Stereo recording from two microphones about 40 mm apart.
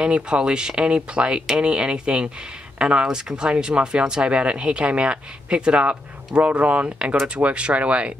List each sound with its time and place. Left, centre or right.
0.0 s speech: right